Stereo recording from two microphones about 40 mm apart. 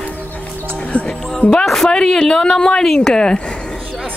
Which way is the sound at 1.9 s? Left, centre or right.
Centre.